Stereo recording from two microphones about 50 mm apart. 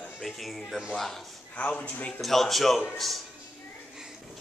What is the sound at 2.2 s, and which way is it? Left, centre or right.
Speech, centre.